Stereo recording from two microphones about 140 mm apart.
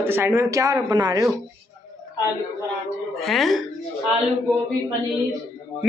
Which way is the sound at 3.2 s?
Centre (ahead or behind).